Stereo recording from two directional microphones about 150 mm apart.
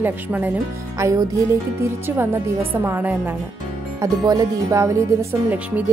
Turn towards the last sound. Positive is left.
turn(degrees=-15)  # may be behind; listen again after turning